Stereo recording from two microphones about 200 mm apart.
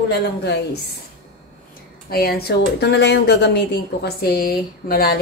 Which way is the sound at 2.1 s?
50° left (ahead or behind).